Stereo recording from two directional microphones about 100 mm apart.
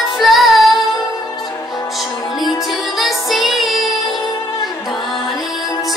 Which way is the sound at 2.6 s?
Centre (ahead or behind).